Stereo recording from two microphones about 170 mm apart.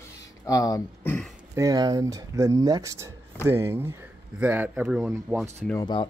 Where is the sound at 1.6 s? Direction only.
20° right (ahead or behind); by 5.1 s 5° right (ahead or behind).